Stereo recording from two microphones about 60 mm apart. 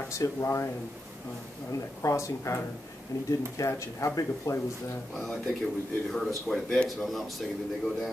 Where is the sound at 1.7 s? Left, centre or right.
Left.